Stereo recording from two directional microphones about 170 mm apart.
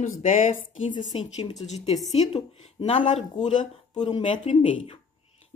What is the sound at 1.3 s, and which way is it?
Speech, 40° left (ahead or behind).